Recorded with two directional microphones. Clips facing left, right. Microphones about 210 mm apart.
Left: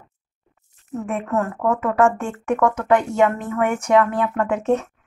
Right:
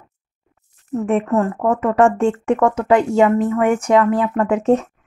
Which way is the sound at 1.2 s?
30° right (ahead or behind).